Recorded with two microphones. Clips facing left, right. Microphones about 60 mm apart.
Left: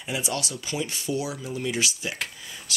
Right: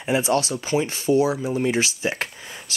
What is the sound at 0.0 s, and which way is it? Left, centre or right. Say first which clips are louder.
Speech: right 9 dB; right.